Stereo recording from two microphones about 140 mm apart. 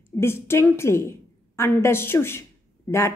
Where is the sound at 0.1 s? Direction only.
20° left (ahead or behind).